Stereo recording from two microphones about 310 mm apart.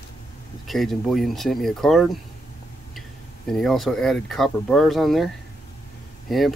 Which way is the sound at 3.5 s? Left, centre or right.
Centre.